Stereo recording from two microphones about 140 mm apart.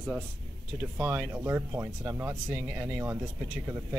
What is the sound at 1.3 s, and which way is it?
Speech, 15° right (ahead or behind).